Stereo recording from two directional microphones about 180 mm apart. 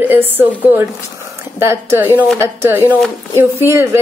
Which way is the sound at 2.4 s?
15° right (ahead or behind).